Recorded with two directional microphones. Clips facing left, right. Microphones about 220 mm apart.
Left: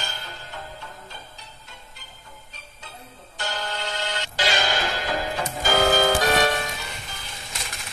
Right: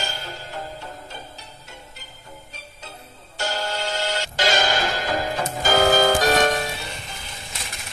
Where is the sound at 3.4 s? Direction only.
40° right (ahead or behind).